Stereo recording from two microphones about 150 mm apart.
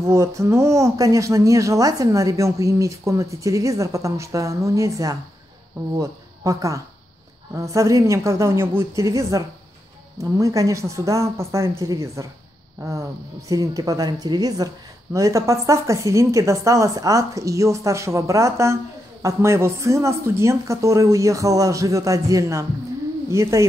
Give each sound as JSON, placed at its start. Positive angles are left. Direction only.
{"t": 0.0, "sound": "a woman's voice", "side_deg": -20}